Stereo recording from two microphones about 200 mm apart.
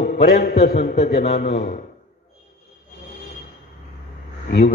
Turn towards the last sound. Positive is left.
turn(degrees=50)  # may be behind; listen again after turning